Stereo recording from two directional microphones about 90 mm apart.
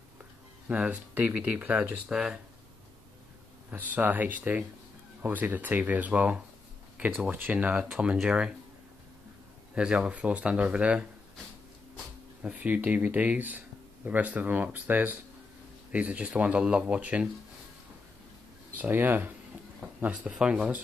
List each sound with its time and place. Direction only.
0.2 s speech: 15° right (ahead or behind)
3.7 s speech: 20° right (ahead or behind)
9.8 s speech: 10° right (ahead or behind)
12.4 s speech: 15° right (ahead or behind)
18.8 s speech: 20° right (ahead or behind)